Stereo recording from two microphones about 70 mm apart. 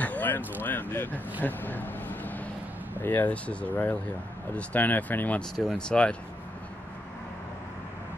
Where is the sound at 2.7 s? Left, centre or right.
Right.